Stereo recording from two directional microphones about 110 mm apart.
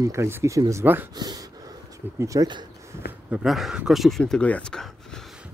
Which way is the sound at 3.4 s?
Centre (ahead or behind).